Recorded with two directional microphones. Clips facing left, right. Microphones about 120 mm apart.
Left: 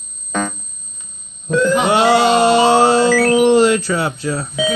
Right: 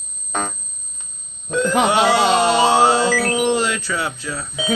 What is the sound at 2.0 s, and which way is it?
Music, 60° left (ahead or behind).